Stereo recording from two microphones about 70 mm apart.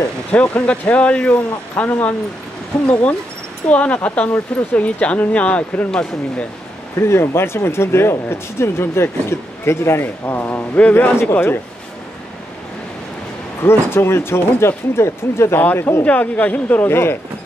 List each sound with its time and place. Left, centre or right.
0.3 s speech: centre
7.0 s speech: left
13.6 s speech: left
16.0 s speech: left
16.9 s speech: left